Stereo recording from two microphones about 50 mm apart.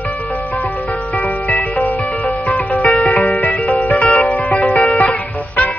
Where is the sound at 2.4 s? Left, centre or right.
Left.